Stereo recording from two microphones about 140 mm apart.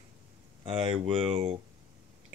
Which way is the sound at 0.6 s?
40° right (ahead or behind).